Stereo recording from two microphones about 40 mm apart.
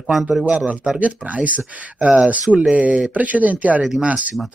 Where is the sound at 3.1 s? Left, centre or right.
Right.